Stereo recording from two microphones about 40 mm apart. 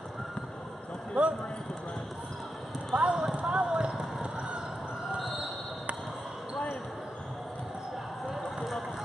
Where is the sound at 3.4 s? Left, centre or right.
Centre.